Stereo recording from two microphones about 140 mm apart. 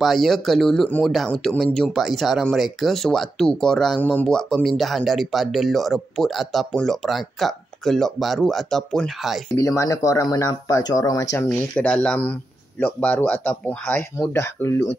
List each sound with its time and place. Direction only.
0.0 s speech: centre (ahead or behind)
9.6 s speech: 20° left (ahead or behind)
11.4 s speech: 10° left (ahead or behind)